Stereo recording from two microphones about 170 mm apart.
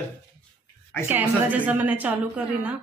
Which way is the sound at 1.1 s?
10° right (ahead or behind).